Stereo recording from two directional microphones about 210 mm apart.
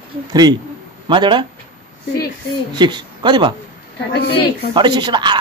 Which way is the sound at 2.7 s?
20° right (ahead or behind).